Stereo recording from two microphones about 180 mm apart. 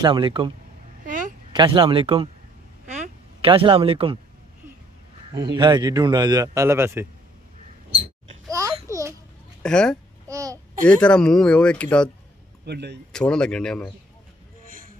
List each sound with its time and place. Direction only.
0.0 s a man's voice: 25° right (ahead or behind)
1.5 s a man's voice: 25° right (ahead or behind)
3.4 s a man's voice: 30° right (ahead or behind)
5.5 s a man's voice: 25° right (ahead or behind)
8.5 s a sound: 20° right (ahead or behind)
8.8 s babbling: 15° right (ahead or behind)
9.6 s speech: 5° left (ahead or behind)
10.2 s babbling: 15° right (ahead or behind)
10.9 s speech: 5° left (ahead or behind)
12.6 s speech: 70° right (ahead or behind)
13.1 s speech: 5° left (ahead or behind)
14.6 s music: 50° right (ahead or behind)